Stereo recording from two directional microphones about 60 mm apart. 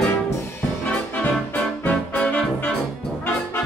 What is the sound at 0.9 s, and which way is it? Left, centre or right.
Music, left.